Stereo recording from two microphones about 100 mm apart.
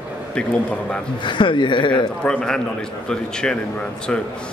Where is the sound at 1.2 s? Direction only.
55° left (ahead or behind).